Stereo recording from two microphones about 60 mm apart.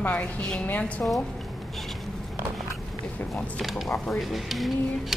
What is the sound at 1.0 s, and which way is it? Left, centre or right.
Speech, left.